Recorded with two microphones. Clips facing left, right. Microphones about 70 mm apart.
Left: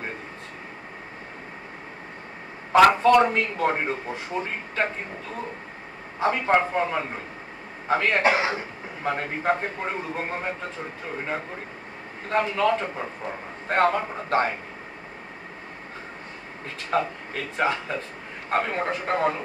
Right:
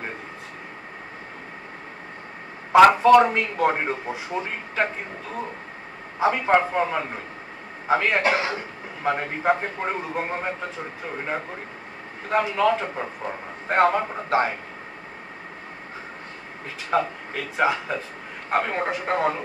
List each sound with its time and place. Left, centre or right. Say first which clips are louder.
2.7 s speech: right 3 dB; centre
6.1 s speech: right 2 dB; centre
8.2 s speech: left 1 dB; centre
9.1 s speech: right 2 dB; centre
12.3 s speech: right 2 dB; centre
16.9 s speech: right 2 dB; centre